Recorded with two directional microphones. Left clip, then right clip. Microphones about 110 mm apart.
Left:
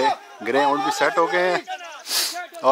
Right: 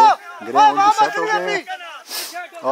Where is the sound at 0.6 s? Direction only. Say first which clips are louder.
Right 8 dB; 30° right (ahead or behind).